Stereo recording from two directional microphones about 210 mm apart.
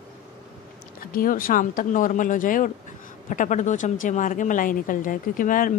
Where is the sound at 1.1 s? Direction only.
40° left (ahead or behind).